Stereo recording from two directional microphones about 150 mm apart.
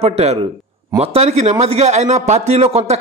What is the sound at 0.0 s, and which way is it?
A man's voice, 45° right (ahead or behind).